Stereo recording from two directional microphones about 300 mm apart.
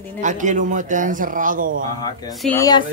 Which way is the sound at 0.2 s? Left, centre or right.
Right.